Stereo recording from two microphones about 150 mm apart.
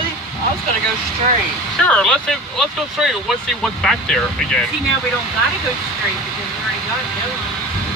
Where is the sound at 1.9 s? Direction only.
5° left (ahead or behind).